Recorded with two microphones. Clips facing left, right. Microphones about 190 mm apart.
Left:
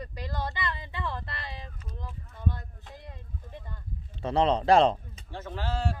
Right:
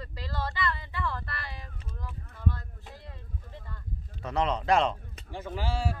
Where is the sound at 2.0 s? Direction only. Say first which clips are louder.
Left 1 dB; 20° left (ahead or behind).